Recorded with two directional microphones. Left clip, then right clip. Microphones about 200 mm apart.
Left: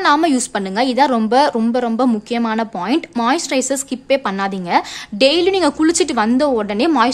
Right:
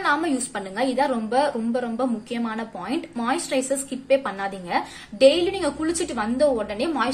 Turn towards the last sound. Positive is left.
turn(degrees=45)  # may be behind; listen again after turning